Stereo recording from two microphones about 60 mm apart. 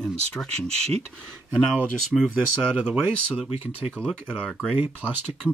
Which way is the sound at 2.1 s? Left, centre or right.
Centre.